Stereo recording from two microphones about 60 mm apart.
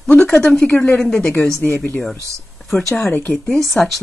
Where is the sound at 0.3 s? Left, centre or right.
Centre.